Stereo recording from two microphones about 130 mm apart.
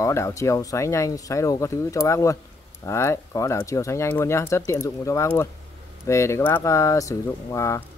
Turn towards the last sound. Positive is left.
turn(degrees=20)  # may be behind; listen again after turning